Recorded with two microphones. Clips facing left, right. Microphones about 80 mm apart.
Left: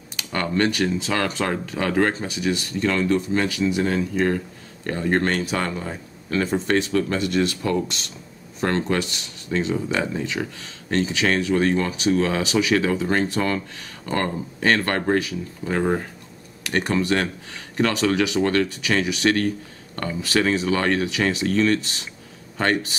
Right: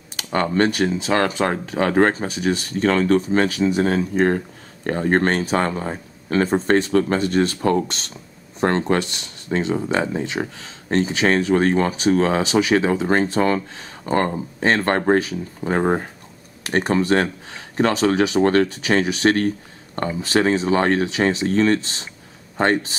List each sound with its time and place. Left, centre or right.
0.1 s speech: right